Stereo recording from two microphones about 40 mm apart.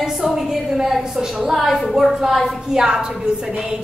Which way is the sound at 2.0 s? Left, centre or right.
Centre.